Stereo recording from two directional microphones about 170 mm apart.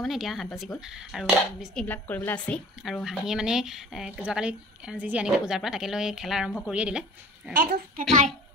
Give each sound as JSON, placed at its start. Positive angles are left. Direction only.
{"t": 0.0, "sound": "speech", "side_deg": 0}
{"t": 1.9, "sound": "a woman's voice", "side_deg": 10}
{"t": 7.5, "sound": "a child's voice", "side_deg": -60}